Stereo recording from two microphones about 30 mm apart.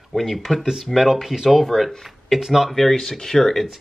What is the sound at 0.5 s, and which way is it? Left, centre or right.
Speech, centre.